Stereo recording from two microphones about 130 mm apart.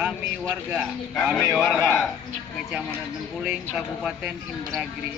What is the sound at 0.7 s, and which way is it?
Speech, 5° right (ahead or behind).